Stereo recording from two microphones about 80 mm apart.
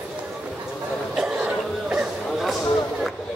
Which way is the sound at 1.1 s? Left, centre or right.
Centre.